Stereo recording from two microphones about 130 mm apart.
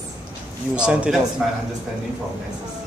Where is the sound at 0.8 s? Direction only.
10° right (ahead or behind).